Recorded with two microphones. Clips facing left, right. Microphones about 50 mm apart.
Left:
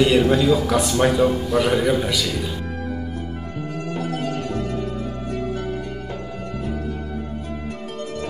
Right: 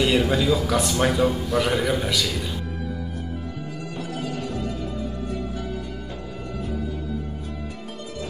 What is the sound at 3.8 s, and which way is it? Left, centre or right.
Music, left.